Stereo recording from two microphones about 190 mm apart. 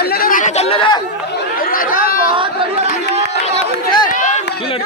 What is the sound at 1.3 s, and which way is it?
Chatter, 50° left (ahead or behind).